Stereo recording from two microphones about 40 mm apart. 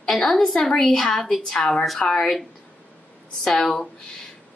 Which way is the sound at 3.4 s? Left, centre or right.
Centre.